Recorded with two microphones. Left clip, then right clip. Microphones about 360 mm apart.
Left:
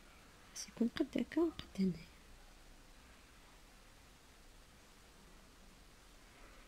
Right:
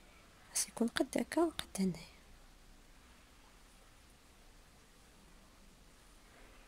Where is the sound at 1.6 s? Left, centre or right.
Centre.